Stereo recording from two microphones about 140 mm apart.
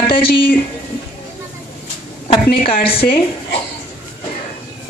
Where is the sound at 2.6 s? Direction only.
40° left (ahead or behind).